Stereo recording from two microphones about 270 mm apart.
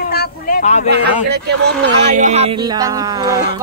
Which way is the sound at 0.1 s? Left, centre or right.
Left.